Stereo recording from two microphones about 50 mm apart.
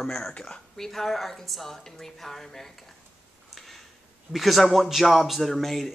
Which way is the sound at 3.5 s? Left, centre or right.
Centre.